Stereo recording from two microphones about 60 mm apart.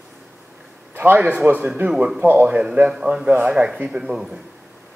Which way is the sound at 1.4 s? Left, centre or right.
Right.